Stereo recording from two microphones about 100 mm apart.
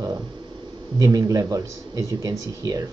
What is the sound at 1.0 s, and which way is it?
Speech, 35° right (ahead or behind).